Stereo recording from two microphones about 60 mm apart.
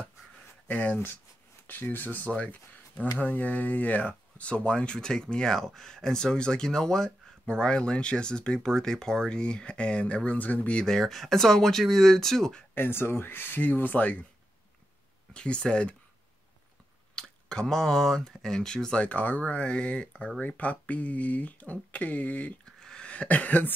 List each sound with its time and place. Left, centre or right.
0.7 s speech: left
10.8 s speech: centre
12.7 s speech: left
15.3 s speech: centre
17.1 s speech: centre
22.8 s a sound: centre
23.1 s speech: left